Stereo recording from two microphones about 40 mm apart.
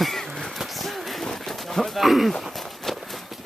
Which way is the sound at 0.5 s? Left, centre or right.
Centre.